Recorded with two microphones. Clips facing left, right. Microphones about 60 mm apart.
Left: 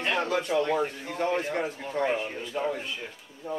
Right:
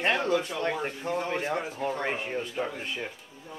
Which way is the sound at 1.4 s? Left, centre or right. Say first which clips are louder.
Right 1 dB; right.